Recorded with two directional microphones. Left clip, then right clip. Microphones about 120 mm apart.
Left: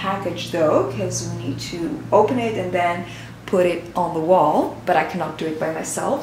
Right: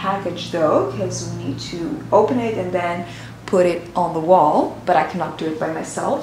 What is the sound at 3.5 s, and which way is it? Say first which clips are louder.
A woman's voice: right 2 dB; 20° right (ahead or behind).